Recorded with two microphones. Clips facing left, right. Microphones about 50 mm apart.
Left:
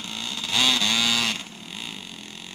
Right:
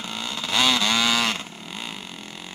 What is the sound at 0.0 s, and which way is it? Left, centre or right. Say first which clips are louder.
Vehicle: right 2 dB; centre.